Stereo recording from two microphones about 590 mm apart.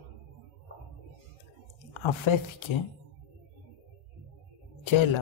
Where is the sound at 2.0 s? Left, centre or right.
Left.